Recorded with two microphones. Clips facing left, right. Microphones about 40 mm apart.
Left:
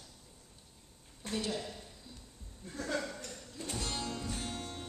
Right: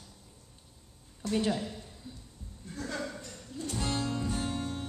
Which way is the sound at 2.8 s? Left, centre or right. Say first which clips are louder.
Even; centre.